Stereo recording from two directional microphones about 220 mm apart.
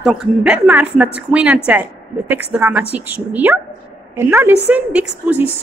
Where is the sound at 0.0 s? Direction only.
Centre (ahead or behind).